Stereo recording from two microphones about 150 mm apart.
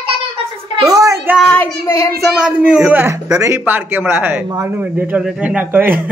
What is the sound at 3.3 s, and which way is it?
Speech, 20° right (ahead or behind).